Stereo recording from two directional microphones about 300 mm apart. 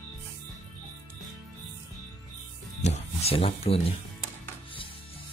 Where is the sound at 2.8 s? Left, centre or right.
Left.